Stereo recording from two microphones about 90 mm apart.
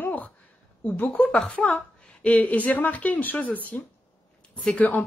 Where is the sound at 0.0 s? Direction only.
20° left (ahead or behind).